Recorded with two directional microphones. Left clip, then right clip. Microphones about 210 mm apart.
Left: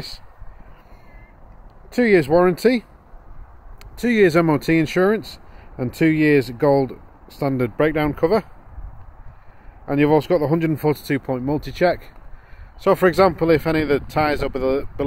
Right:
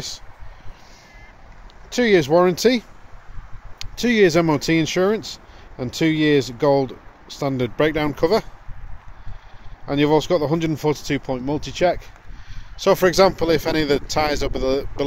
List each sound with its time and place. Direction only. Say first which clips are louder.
1.9 s speech: even; 5° left (ahead or behind)
4.0 s speech: even; 10° left (ahead or behind)
9.8 s speech: left 1 dB; 10° left (ahead or behind)